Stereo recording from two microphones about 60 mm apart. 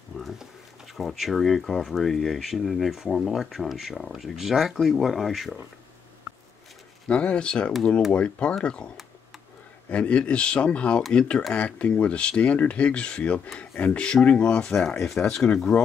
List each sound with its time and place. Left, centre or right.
0.1 s a sound: centre
0.9 s speech: centre
7.1 s speech: centre